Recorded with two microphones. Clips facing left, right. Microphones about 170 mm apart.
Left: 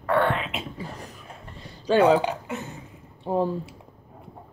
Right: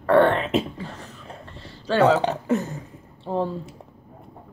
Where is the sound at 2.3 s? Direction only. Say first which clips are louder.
Right 8 dB; 40° right (ahead or behind).